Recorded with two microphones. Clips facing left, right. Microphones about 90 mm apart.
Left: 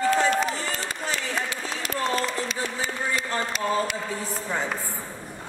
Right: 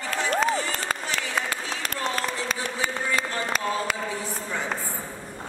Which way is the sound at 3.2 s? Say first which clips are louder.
Even; 45° right (ahead or behind).